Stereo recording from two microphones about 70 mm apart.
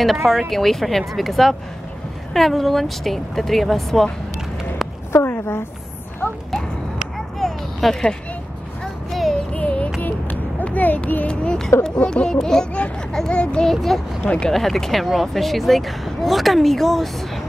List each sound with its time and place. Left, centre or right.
0.0 s speech: centre
5.1 s a woman's voice: left
6.5 s a sound: centre
9.1 s music: centre
9.5 s music: centre
10.0 s a sound: left
11.4 s music: centre
13.4 s speech: centre
14.2 s music: centre
14.5 s speech: centre